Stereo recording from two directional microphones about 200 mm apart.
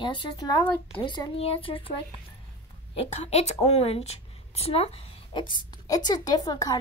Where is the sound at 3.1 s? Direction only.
30° left (ahead or behind).